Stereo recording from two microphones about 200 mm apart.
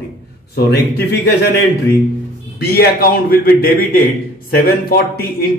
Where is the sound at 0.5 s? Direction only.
55° left (ahead or behind).